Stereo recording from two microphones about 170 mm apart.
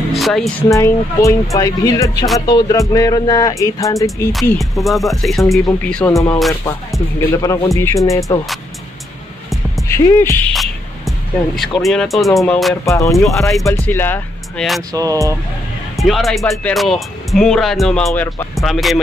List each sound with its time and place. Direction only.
0.1 s speech: centre (ahead or behind)
0.7 s speech: 15° left (ahead or behind)
4.3 s speech: centre (ahead or behind); by 8.2 s 20° left (ahead or behind)
9.8 s speech: 15° left (ahead or behind)
10.5 s speech: centre (ahead or behind)
12.8 s speech: 20° left (ahead or behind)
14.9 s speech: 20° right (ahead or behind)
16.0 s speech: centre (ahead or behind)